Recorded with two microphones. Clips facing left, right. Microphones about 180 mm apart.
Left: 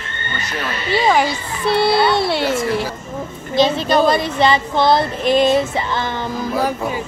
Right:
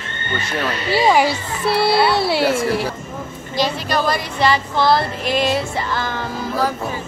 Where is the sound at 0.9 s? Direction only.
5° right (ahead or behind).